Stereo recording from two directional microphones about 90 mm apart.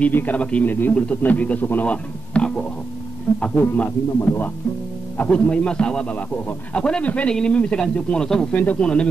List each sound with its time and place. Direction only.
0.0 s a man's voice: 20° left (ahead or behind)
4.2 s speech: 30° left (ahead or behind)
5.1 s a man's voice: 15° left (ahead or behind)